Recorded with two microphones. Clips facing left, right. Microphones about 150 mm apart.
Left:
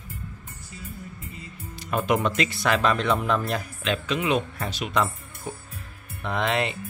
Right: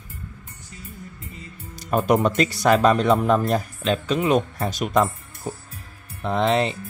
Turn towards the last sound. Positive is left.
turn(degrees=-35)  # may be behind; listen again after turning